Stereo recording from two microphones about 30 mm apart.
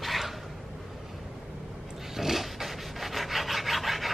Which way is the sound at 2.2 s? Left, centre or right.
Centre.